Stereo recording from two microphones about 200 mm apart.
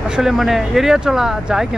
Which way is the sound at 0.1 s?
Centre (ahead or behind).